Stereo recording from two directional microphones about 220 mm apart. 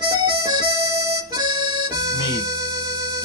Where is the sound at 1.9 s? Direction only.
15° right (ahead or behind).